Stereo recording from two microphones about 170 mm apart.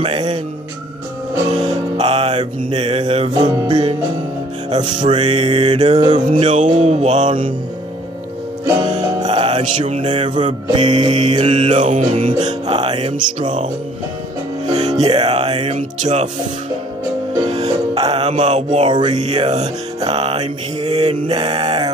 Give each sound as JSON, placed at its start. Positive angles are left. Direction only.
{"t": 0.0, "sound": "music", "side_deg": -30}
{"t": 2.0, "sound": "music", "side_deg": -35}
{"t": 3.3, "sound": "music", "side_deg": -25}
{"t": 5.9, "sound": "music", "side_deg": -25}
{"t": 6.5, "sound": "music", "side_deg": -40}
{"t": 8.8, "sound": "music", "side_deg": -30}
{"t": 10.7, "sound": "music", "side_deg": -30}
{"t": 11.5, "sound": "music", "side_deg": -40}
{"t": 15.0, "sound": "music", "side_deg": -35}
{"t": 17.5, "sound": "music", "side_deg": -35}
{"t": 18.9, "sound": "music", "side_deg": -25}
{"t": 19.1, "sound": "music", "side_deg": -40}